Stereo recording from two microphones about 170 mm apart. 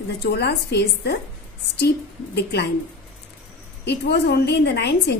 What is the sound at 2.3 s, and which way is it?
Speech, 75° left (ahead or behind).